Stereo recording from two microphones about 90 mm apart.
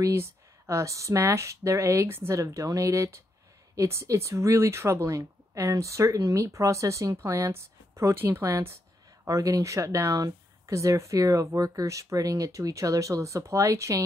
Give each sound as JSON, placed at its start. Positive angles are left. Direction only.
{"t": 0.0, "sound": "speech", "side_deg": -30}